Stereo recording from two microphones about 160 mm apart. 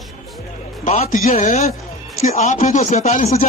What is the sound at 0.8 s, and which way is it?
Speech, 45° left (ahead or behind).